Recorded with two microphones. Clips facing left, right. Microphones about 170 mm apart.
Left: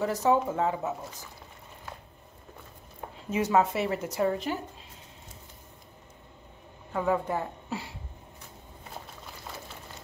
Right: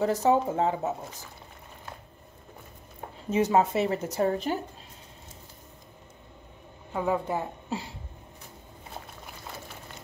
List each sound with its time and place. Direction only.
0.0 s speech: 25° right (ahead or behind)
3.3 s speech: 25° right (ahead or behind)
4.1 s speech: 40° right (ahead or behind)
6.9 s a woman's voice: 15° right (ahead or behind)